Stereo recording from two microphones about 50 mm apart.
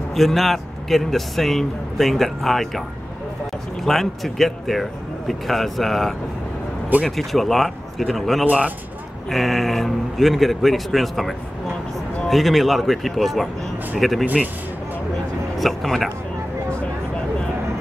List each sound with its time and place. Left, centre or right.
0.1 s speech: centre
3.8 s speech: centre
8.5 s speech: right
9.3 s speech: centre
14.2 s speech: right
15.5 s speech: centre